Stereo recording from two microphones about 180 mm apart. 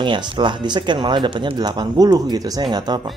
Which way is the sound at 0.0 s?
25° right (ahead or behind).